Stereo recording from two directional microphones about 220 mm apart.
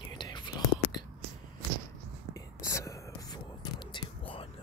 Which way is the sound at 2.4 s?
15° left (ahead or behind).